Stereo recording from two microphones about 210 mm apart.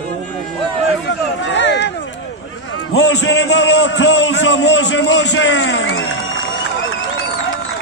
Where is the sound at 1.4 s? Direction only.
60° left (ahead or behind).